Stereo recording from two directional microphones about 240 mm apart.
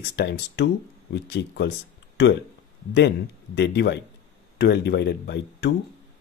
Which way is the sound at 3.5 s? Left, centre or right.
Left.